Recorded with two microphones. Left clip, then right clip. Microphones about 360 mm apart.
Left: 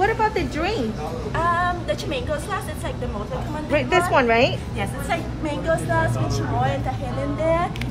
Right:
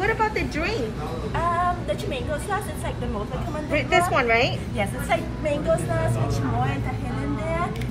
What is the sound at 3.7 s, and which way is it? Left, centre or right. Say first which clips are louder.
Speech: left 2 dB; left.